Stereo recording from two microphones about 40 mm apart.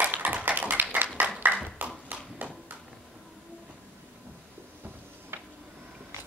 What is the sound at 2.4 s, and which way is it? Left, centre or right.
Clip-clop, right.